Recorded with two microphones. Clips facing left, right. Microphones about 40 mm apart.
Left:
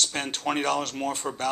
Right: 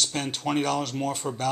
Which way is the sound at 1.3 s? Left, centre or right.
Left.